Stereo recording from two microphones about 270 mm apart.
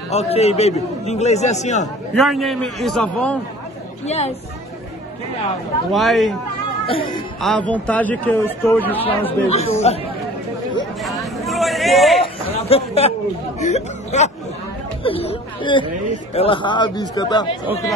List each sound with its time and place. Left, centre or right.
0.1 s a man's voice: left
2.1 s a man's voice: centre
4.0 s a man's voice: left
5.9 s a man's voice: centre
7.4 s speech: centre
9.5 s a man's voice: left
11.0 s a sound: centre
12.5 s chatter: left
13.6 s a man's voice: left